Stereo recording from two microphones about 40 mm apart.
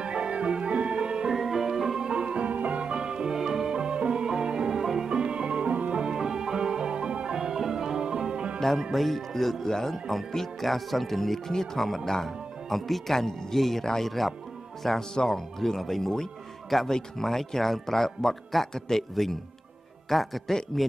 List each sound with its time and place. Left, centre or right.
0.0 s music: right
1.3 s music: centre
2.0 s music: right
2.4 s music: right
2.8 s music: right
5.1 s music: right
6.1 s music: centre
7.3 s music: centre
8.5 s music: centre
8.9 s speech: centre